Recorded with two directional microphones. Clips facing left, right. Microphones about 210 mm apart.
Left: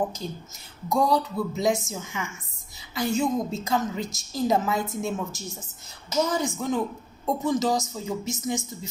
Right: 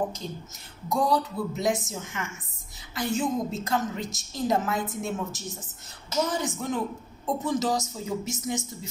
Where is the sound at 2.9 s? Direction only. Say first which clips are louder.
Left 2 dB; centre (ahead or behind).